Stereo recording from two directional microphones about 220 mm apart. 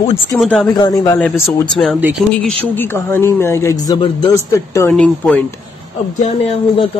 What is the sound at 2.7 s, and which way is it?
Speech, 10° left (ahead or behind).